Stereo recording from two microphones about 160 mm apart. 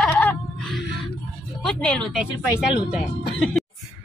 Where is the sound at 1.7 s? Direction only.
5° left (ahead or behind).